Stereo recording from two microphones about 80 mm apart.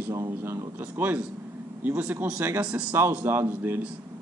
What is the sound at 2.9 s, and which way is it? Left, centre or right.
Speech, right.